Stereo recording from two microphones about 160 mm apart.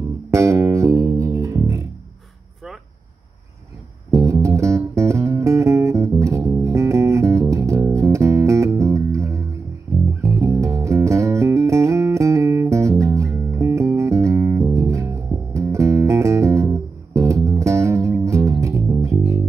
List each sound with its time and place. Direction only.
0.3 s music: 20° right (ahead or behind)
4.1 s music: 20° right (ahead or behind)